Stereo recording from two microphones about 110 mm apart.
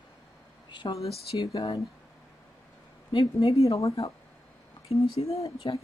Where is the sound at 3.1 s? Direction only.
45° left (ahead or behind).